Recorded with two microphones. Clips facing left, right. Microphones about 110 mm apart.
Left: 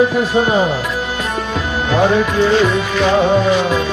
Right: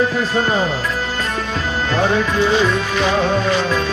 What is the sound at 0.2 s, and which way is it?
Music, 15° left (ahead or behind).